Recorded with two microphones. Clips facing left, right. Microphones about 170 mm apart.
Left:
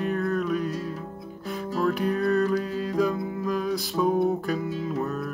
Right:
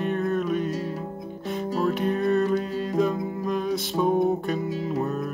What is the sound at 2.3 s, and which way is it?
Music, centre (ahead or behind).